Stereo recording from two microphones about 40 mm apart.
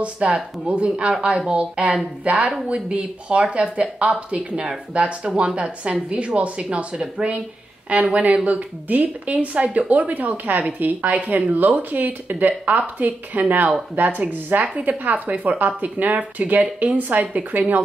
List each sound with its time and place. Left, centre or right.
0.0 s speech: right